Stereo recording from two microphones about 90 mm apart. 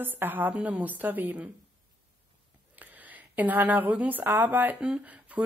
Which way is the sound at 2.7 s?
20° right (ahead or behind).